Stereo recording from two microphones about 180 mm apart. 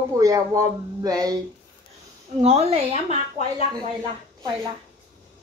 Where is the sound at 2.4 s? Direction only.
35° right (ahead or behind).